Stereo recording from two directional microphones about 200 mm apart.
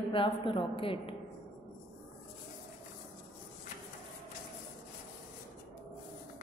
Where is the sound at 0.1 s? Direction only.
25° left (ahead or behind).